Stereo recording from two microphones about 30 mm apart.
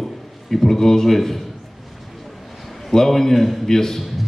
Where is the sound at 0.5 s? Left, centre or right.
Centre.